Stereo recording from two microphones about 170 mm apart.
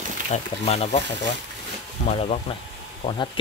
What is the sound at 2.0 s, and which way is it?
Speech, 40° left (ahead or behind).